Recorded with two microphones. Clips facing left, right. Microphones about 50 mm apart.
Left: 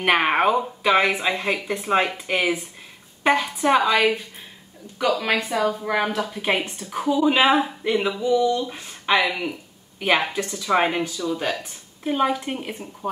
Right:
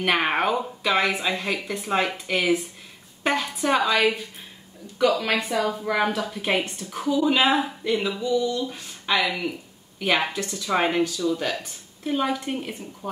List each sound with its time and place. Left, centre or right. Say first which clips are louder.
0.0 s speech: left 3 dB; centre
7.8 s a sound: left 3 dB; left
10.3 s speech: left 3 dB; centre